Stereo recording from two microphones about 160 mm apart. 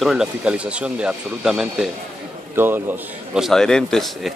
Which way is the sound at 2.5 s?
15° right (ahead or behind).